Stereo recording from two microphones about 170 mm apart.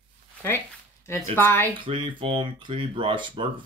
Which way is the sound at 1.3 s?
10° left (ahead or behind).